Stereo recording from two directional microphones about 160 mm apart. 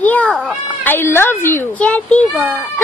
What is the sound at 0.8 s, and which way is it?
A child's voice, 15° left (ahead or behind).